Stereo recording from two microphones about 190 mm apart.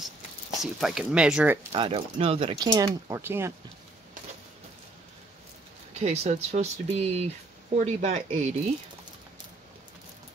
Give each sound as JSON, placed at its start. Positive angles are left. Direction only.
{"t": 0.6, "sound": "speech", "side_deg": 0}
{"t": 1.7, "sound": "speech", "side_deg": -30}
{"t": 5.9, "sound": "speech", "side_deg": -35}